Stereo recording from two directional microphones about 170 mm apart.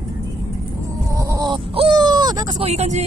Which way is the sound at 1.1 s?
20° right (ahead or behind).